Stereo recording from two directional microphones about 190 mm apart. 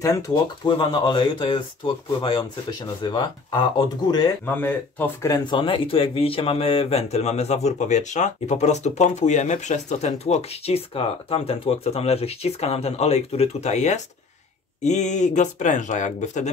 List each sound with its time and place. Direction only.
0.7 s speech: 25° left (ahead or behind)
3.0 s speech: 25° left (ahead or behind)
4.6 s speech: 10° left (ahead or behind); by 16.4 s 40° left (ahead or behind)